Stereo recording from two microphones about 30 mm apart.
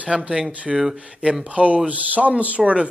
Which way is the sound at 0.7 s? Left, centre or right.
Centre.